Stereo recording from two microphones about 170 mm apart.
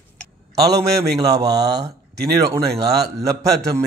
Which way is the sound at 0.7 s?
75° right (ahead or behind).